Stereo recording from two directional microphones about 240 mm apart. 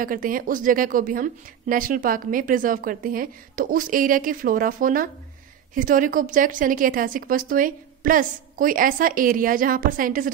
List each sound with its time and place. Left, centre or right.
0.0 s a woman's voice: right